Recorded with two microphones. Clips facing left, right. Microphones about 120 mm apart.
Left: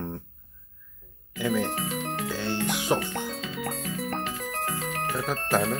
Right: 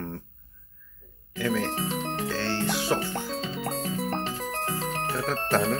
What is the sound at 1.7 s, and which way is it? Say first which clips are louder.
Music: right 1 dB; 30° right (ahead or behind).